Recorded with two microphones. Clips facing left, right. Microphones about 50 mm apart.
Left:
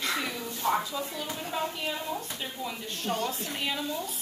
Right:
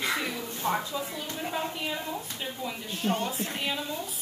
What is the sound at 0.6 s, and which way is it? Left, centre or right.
Speech, right.